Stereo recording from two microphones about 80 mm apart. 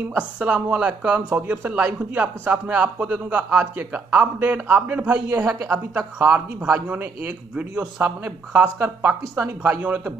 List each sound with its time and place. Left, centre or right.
0.4 s a man's voice: centre
5.5 s speech: right
6.2 s a man's voice: centre